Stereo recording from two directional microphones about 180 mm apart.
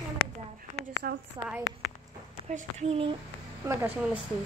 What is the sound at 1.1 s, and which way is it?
Speech, 55° right (ahead or behind).